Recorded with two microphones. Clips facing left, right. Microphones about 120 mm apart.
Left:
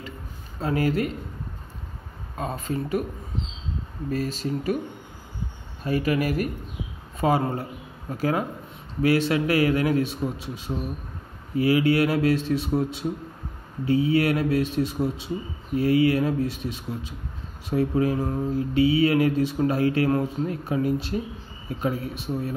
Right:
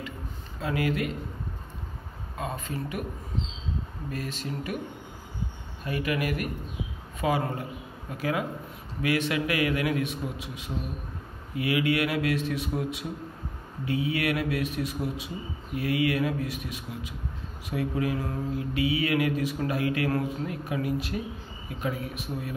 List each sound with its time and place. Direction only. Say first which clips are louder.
0.6 s mantra: left 4 dB; 40° left (ahead or behind)
2.3 s mantra: left 5 dB; 40° left (ahead or behind)
4.1 s mantra: left 8 dB; 35° left (ahead or behind)
5.9 s mantra: left 5 dB; 35° left (ahead or behind)
13.8 s speech: left 7 dB; 30° left (ahead or behind)
17.6 s mantra: left 6 dB; 30° left (ahead or behind)